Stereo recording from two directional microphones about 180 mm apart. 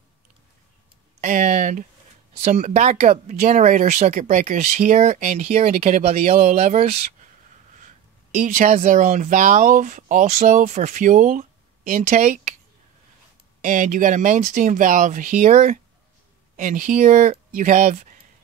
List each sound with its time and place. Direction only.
1.2 s a sound: 45° right (ahead or behind)
2.4 s speech: 40° right (ahead or behind)
13.6 s speech: 45° right (ahead or behind)